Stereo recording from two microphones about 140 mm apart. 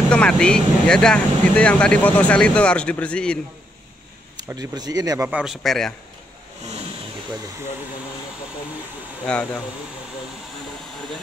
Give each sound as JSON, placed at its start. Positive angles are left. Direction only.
{"t": 0.1, "sound": "speech", "side_deg": 5}
{"t": 4.4, "sound": "speech", "side_deg": -25}
{"t": 5.3, "sound": "speech", "side_deg": -5}
{"t": 9.2, "sound": "speech", "side_deg": 10}